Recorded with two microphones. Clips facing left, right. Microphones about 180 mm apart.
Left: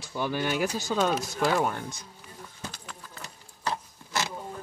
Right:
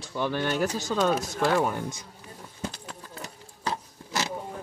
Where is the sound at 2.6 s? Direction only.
30° right (ahead or behind).